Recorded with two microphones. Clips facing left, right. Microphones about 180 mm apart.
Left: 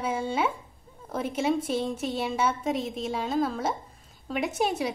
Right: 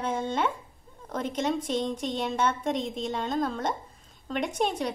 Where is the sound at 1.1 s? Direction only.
5° left (ahead or behind).